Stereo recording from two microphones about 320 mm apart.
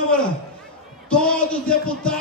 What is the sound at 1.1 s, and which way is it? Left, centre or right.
A man's voice, centre.